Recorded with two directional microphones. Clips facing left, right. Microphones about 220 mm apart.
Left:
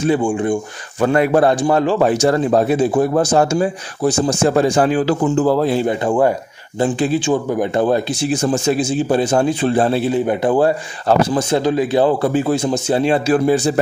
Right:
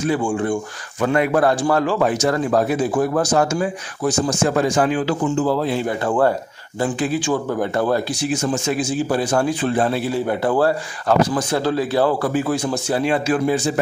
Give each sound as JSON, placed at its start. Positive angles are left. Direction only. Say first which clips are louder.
{"t": 0.0, "sound": "a man's voice", "louder": "left 4 dB", "side_deg": 25}
{"t": 1.0, "sound": "a man's voice", "louder": "left 3 dB", "side_deg": 35}
{"t": 5.2, "sound": "speech", "louder": "left 4 dB", "side_deg": 45}
{"t": 5.9, "sound": "speech", "louder": "left 3 dB", "side_deg": 15}
{"t": 6.8, "sound": "a man's voice", "louder": "left 4 dB", "side_deg": 25}